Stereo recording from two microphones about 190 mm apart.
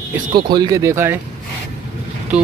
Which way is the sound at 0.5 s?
20° right (ahead or behind).